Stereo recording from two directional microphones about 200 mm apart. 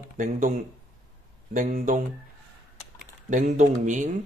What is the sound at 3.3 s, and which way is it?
Speech, 35° right (ahead or behind).